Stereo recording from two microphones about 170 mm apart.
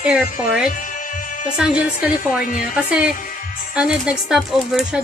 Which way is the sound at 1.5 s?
5° right (ahead or behind).